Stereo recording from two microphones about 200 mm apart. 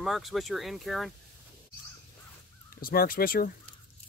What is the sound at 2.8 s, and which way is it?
Speech, 50° left (ahead or behind).